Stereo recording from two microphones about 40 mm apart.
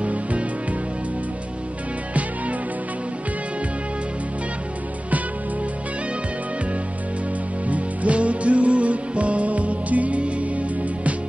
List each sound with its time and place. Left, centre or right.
0.0 s music: right
7.6 s music: right